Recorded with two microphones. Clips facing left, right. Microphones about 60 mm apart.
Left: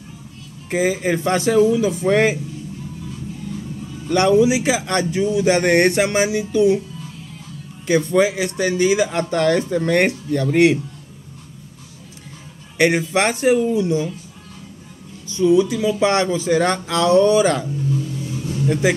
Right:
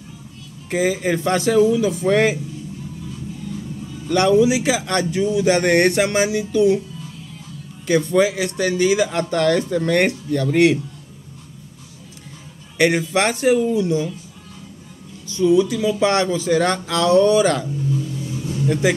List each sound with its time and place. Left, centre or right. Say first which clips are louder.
0.7 s speech: even; centre
4.1 s speech: even; left
7.8 s speech: even; centre
12.7 s speech: even; centre
15.2 s speech: left 1 dB; left
18.7 s speech: even; centre